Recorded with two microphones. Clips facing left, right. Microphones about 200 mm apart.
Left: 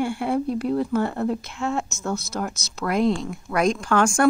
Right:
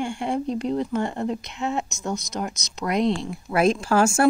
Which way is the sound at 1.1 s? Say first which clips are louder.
Left 2 dB; 15° right (ahead or behind).